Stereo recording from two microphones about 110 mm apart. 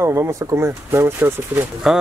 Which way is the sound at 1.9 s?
5° right (ahead or behind).